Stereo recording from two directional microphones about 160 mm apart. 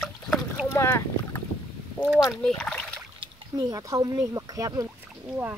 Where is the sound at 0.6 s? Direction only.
15° left (ahead or behind).